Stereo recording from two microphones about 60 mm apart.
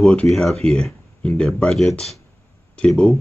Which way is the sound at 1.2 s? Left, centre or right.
Centre.